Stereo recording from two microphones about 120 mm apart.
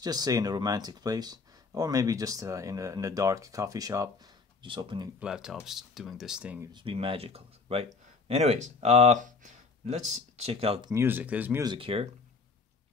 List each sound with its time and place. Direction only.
0.0 s speech: 30° right (ahead or behind)
4.6 s speech: 45° right (ahead or behind)
5.2 s speech: 5° right (ahead or behind)
6.7 s speech: 45° right (ahead or behind)
10.9 s speech: 20° right (ahead or behind)
11.6 s speech: 40° right (ahead or behind)